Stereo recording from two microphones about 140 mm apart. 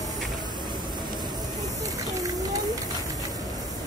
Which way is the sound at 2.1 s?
25° right (ahead or behind).